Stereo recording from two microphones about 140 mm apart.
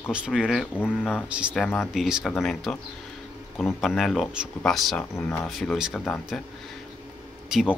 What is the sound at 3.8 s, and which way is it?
Speech, centre (ahead or behind).